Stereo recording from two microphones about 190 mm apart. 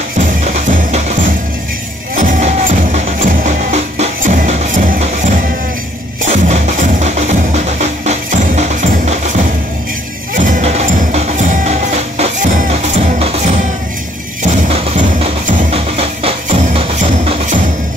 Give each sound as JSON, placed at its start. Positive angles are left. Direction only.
{"t": 0.4, "sound": "music", "side_deg": -40}
{"t": 2.1, "sound": "music", "side_deg": -40}
{"t": 14.4, "sound": "music", "side_deg": -40}